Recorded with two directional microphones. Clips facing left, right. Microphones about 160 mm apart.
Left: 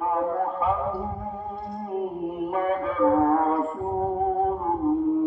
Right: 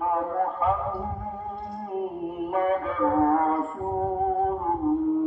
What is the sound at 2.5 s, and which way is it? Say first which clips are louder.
Music: right 1 dB; centre (ahead or behind).